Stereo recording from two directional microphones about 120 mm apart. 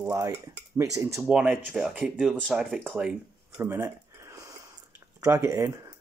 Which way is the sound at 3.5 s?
25° right (ahead or behind).